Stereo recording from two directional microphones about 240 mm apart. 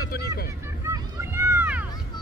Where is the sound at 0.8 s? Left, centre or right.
Centre.